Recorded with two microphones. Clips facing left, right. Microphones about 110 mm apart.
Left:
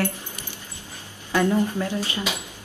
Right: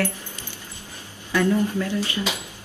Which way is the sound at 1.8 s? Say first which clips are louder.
Right 1 dB; 20° left (ahead or behind).